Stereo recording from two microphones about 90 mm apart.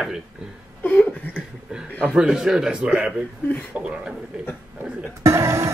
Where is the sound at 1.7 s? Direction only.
10° right (ahead or behind).